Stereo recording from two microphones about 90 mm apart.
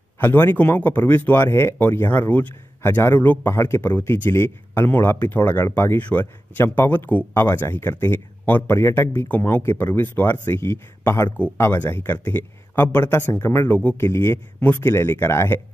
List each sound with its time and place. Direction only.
0.2 s speech: 25° left (ahead or behind)